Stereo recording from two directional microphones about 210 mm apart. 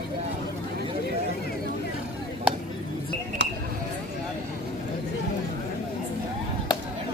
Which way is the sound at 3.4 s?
55° right (ahead or behind).